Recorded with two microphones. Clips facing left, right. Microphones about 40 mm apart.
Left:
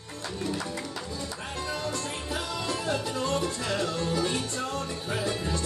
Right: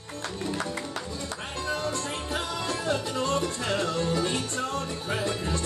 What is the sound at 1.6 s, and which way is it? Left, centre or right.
Music, right.